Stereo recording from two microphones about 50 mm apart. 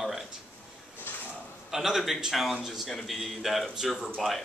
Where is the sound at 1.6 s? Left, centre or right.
Centre.